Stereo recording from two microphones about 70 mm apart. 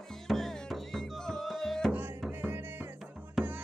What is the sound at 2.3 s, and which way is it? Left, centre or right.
Music, right.